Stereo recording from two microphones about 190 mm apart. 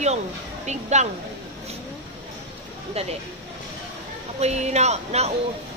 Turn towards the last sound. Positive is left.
turn(degrees=-35)  # may be behind; listen again after turning